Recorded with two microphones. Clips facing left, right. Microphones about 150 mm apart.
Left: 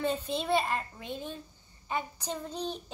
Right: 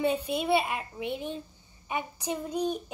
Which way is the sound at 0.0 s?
10° right (ahead or behind).